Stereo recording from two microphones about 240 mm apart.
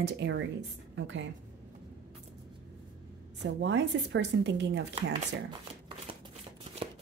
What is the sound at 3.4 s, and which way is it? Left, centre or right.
Speech, right.